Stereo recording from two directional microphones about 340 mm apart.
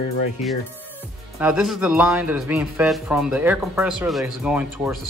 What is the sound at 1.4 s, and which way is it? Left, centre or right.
Speech, centre.